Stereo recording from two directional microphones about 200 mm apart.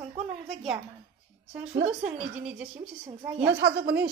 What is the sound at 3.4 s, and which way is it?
Speech, 55° right (ahead or behind).